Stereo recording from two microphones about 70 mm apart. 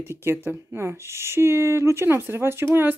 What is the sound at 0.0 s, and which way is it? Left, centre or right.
Speech, right.